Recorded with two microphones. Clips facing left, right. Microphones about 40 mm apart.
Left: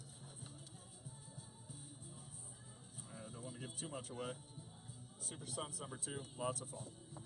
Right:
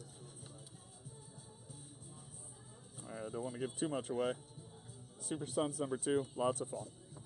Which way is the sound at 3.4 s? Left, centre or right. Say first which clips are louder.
Right 11 dB; centre.